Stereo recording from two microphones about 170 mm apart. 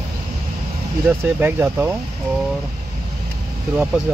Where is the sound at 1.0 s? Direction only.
10° right (ahead or behind).